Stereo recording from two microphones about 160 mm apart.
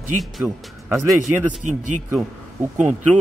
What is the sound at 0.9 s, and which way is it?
Speech, centre (ahead or behind).